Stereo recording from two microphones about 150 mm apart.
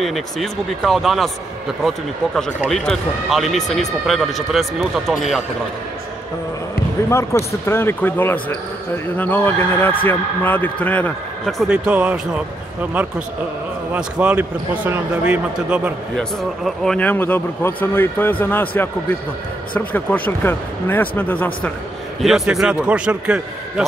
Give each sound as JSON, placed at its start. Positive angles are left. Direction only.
{"t": 0.0, "sound": "speech", "side_deg": 0}
{"t": 2.7, "sound": "speech", "side_deg": 5}
{"t": 7.1, "sound": "speech", "side_deg": 20}
{"t": 13.9, "sound": "speech", "side_deg": -5}
{"t": 16.2, "sound": "speech", "side_deg": 5}
{"t": 19.7, "sound": "speech", "side_deg": 10}
{"t": 22.2, "sound": "speech", "side_deg": 0}